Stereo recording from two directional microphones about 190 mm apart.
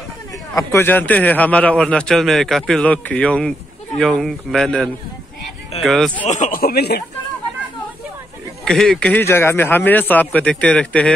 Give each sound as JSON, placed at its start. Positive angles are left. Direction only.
{"t": 0.6, "sound": "a man's voice", "side_deg": 15}
{"t": 6.2, "sound": "speech", "side_deg": 40}
{"t": 8.6, "sound": "a man's voice", "side_deg": 5}